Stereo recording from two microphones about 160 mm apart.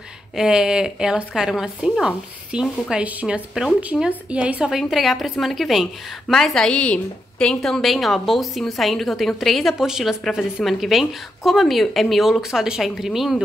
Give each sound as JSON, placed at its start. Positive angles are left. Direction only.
{"t": 0.4, "sound": "speech", "side_deg": -5}